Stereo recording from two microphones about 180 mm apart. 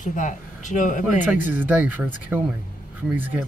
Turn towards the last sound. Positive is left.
turn(degrees=-10)  # may be behind; listen again after turning